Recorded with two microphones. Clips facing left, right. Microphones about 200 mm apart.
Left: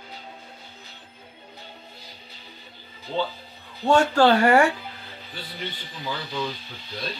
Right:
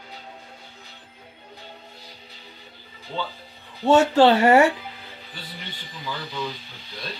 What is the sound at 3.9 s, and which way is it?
Speech, 25° right (ahead or behind).